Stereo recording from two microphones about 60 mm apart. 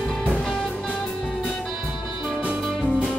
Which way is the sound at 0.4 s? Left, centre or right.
Centre.